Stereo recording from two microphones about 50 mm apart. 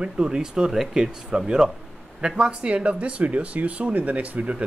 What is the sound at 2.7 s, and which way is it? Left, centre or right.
Speech, right.